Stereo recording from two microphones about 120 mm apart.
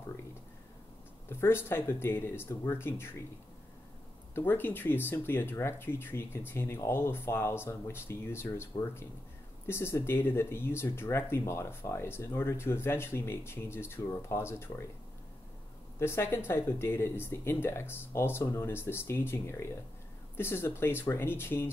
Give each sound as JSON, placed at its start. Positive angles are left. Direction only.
{"t": 1.3, "sound": "speech", "side_deg": 20}
{"t": 4.4, "sound": "speech", "side_deg": 15}
{"t": 16.0, "sound": "speech", "side_deg": 20}